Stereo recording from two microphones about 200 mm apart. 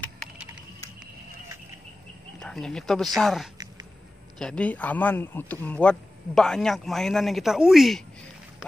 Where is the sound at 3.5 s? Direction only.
20° right (ahead or behind).